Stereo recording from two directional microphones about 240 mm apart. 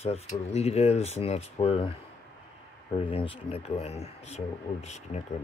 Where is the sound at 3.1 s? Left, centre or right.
Left.